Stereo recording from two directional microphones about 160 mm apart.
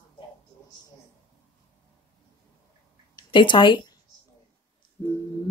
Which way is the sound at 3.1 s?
30° left (ahead or behind).